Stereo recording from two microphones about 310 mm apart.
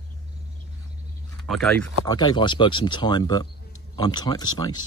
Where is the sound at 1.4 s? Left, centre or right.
Centre.